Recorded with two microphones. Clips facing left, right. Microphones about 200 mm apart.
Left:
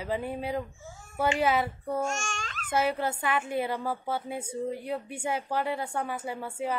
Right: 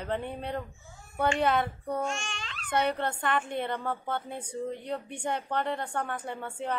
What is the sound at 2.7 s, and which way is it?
A woman's voice, 5° left (ahead or behind).